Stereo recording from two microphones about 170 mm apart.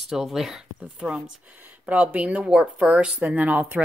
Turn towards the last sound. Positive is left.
turn(degrees=-10)  # may be behind; listen again after turning